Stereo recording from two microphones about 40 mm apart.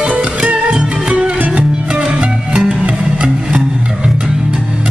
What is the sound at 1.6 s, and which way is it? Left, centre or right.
Music, right.